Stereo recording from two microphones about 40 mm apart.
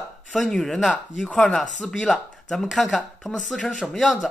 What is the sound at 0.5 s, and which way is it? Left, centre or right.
Speech, centre.